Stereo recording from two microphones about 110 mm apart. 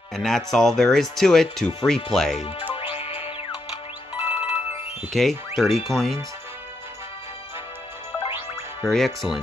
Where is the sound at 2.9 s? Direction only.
60° left (ahead or behind).